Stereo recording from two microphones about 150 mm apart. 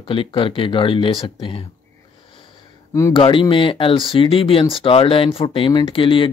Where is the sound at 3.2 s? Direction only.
35° left (ahead or behind).